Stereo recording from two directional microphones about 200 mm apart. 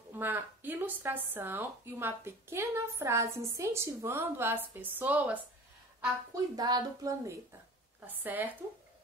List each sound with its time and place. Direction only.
0.1 s speech: 10° right (ahead or behind)
6.5 s a woman's voice: 20° right (ahead or behind)